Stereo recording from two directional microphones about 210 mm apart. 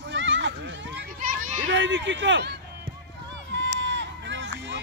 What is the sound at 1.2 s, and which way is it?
Children playing, 40° right (ahead or behind).